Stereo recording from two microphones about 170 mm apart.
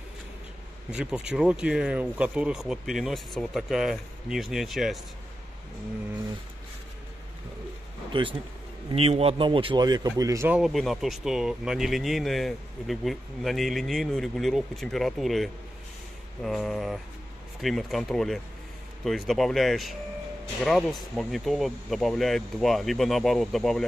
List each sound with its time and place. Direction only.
0.9 s speech: 5° right (ahead or behind)
8.1 s a man's voice: 30° right (ahead or behind)
10.5 s speech: centre (ahead or behind)